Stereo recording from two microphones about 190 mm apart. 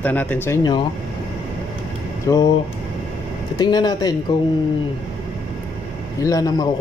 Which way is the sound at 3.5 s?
20° left (ahead or behind).